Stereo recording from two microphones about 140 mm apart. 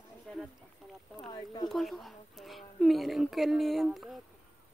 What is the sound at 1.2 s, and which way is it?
Speech, 30° left (ahead or behind).